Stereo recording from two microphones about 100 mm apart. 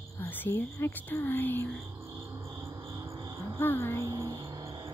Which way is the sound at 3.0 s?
35° right (ahead or behind).